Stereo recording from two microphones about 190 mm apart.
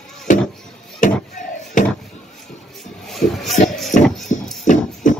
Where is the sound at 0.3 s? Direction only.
40° left (ahead or behind).